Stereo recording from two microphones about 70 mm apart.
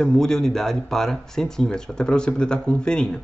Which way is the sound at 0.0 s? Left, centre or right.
Centre.